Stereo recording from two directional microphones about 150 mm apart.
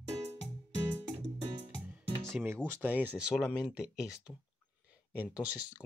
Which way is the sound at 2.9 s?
10° right (ahead or behind).